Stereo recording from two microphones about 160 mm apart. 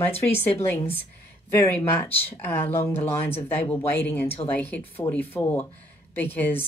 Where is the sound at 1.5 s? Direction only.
15° left (ahead or behind).